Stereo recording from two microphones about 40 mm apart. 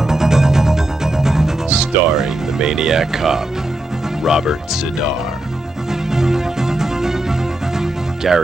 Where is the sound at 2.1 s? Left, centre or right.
Centre.